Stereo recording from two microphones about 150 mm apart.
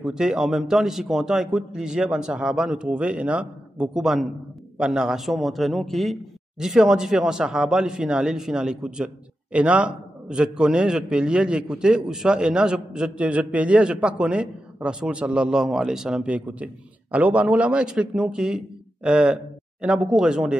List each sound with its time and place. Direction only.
0.0 s speech: 5° right (ahead or behind)